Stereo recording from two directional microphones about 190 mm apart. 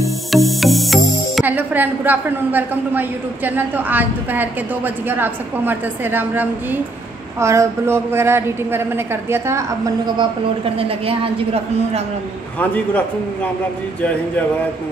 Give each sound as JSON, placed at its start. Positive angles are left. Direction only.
{"t": 0.0, "sound": "a woman's voice", "side_deg": 0}
{"t": 10.6, "sound": "a woman's voice", "side_deg": -30}
{"t": 12.5, "sound": "a man's voice", "side_deg": 10}